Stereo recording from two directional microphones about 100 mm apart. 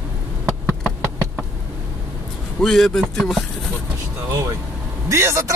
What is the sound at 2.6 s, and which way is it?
Speech, 5° left (ahead or behind).